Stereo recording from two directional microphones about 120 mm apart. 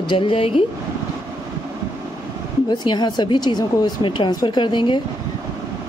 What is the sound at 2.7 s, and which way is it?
A woman's voice, 35° left (ahead or behind).